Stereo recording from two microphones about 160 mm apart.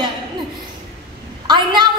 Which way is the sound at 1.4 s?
30° right (ahead or behind).